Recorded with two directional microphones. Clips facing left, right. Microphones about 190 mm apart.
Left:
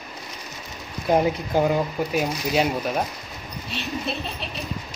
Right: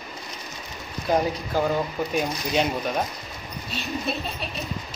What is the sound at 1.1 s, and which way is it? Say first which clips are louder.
Speech: left 3 dB; 20° left (ahead or behind).